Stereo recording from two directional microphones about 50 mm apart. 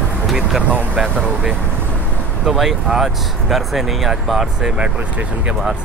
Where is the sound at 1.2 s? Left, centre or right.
Centre.